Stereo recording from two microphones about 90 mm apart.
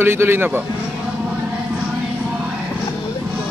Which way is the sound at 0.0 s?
25° right (ahead or behind).